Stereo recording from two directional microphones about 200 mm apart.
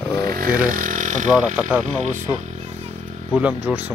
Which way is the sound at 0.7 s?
40° right (ahead or behind).